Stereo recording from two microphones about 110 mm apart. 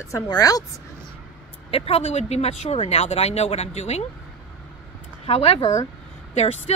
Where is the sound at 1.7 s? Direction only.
60° left (ahead or behind); by 4.0 s 80° left.